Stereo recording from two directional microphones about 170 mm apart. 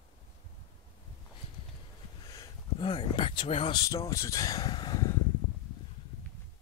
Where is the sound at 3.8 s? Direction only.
20° left (ahead or behind).